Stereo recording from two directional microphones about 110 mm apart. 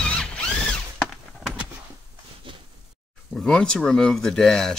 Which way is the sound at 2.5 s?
50° right (ahead or behind).